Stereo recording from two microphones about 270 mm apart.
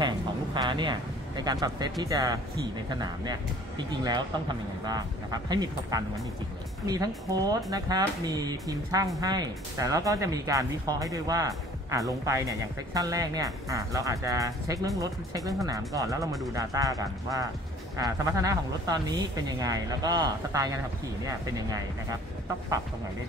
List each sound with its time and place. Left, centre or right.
0.6 s speech: centre
7.7 s speech: centre